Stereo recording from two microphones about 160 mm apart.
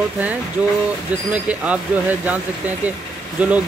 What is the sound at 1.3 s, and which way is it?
Speech, 10° right (ahead or behind).